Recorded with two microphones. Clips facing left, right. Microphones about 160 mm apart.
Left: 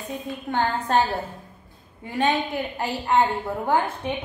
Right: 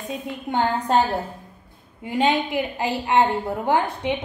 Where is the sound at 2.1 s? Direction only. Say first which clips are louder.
Right 2 dB; 15° right (ahead or behind).